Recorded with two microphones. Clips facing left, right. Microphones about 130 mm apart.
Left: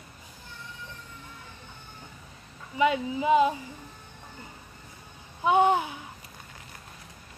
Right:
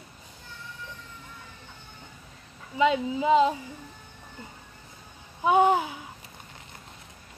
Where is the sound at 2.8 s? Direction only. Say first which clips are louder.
Right 1 dB; 25° right (ahead or behind).